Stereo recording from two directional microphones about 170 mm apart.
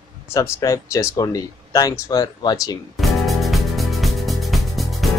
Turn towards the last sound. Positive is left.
turn(degrees=0)  # may be behind; listen again after turning